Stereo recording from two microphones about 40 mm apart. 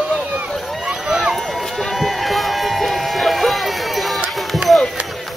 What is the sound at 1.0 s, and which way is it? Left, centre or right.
Run, centre.